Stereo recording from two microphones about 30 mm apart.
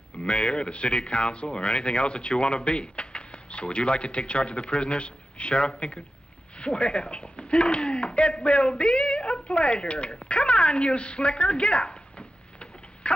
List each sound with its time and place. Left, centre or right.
0.2 s speech: left